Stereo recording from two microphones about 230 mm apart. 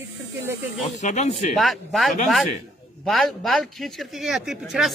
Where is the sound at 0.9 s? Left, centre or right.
Left.